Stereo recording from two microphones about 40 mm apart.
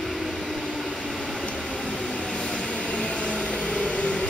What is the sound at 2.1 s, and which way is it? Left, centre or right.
Vehicle, centre.